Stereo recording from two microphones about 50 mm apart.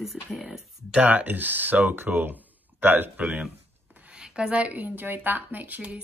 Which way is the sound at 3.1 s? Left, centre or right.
Right.